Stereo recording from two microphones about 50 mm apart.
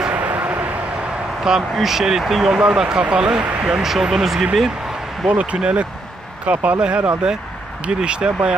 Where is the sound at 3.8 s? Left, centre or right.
Centre.